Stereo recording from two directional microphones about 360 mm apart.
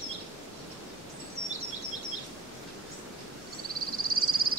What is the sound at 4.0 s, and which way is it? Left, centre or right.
Caw, right.